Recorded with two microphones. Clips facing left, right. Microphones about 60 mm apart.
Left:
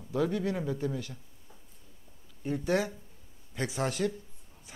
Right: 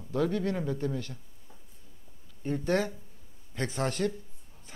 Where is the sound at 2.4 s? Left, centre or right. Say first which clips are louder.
Right 1 dB; centre.